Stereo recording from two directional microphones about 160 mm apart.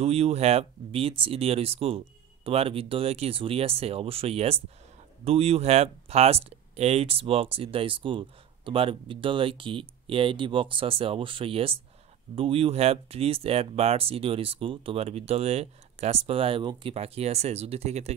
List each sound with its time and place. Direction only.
0.0 s speech: 40° right (ahead or behind)